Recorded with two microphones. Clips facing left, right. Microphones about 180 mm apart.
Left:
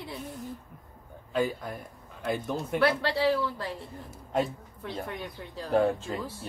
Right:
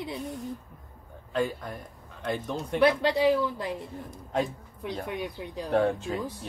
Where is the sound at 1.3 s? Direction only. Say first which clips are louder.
Even; 5° left (ahead or behind).